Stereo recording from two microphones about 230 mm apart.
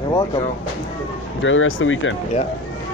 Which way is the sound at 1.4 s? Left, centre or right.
Left.